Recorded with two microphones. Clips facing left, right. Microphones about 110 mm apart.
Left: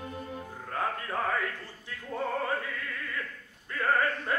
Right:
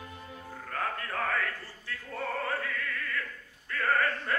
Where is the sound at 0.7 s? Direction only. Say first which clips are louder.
Left 2 dB; 20° left (ahead or behind).